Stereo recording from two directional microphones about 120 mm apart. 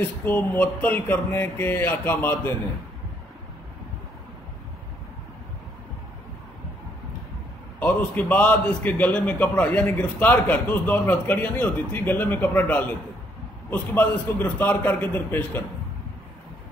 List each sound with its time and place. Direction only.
0.0 s a man's voice: 15° left (ahead or behind)
7.8 s a man's voice: 15° left (ahead or behind)